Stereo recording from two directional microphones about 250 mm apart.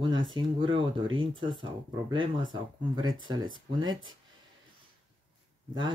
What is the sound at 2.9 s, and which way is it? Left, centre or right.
Speech, centre.